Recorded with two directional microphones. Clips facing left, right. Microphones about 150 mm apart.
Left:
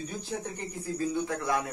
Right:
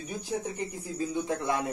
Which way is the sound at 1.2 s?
25° right (ahead or behind).